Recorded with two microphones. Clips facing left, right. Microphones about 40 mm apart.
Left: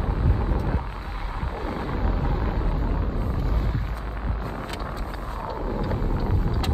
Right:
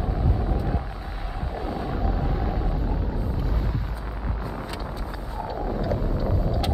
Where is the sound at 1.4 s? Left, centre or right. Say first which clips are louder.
Right 1 dB; left.